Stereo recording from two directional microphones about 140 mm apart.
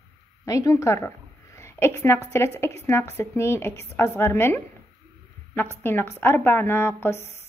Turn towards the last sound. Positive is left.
turn(degrees=15)  # may be behind; listen again after turning